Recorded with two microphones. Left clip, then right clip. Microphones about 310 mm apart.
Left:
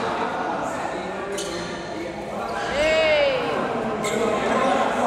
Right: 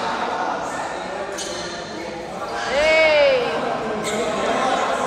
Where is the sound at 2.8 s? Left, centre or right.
Right.